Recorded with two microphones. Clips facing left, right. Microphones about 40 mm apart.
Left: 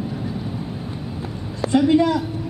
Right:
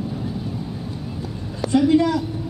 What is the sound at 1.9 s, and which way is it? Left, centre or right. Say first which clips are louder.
Speech: left 1 dB; left.